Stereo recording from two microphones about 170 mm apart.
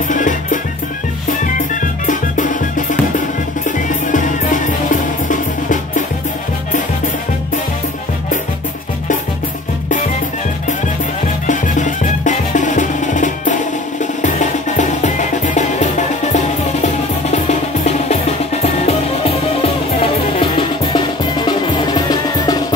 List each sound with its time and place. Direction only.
0.1 s music: 50° left (ahead or behind)
4.1 s music: 50° left (ahead or behind)
11.4 s music: 45° left (ahead or behind)
17.3 s drum: 40° left (ahead or behind)
18.6 s music: 35° left (ahead or behind)
21.5 s drum: 25° left (ahead or behind)